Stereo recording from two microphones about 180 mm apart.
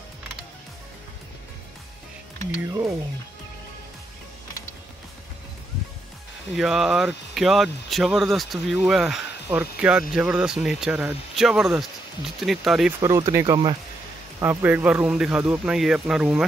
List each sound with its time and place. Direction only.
6.5 s speech: centre (ahead or behind)
13.0 s speech: 15° right (ahead or behind)
14.4 s speech: 10° right (ahead or behind)